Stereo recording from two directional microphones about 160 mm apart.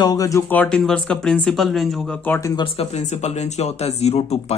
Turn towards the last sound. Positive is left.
turn(degrees=40)  # may be behind; listen again after turning